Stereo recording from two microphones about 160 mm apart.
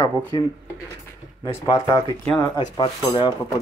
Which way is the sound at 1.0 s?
15° left (ahead or behind).